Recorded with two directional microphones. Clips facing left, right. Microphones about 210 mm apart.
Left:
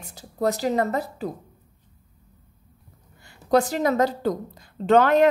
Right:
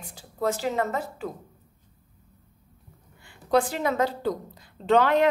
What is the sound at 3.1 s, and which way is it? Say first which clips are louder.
A woman's voice: left 3 dB; 40° left (ahead or behind).